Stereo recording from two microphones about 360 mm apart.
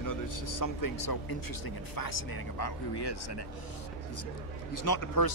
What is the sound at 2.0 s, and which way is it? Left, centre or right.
A man's voice, left.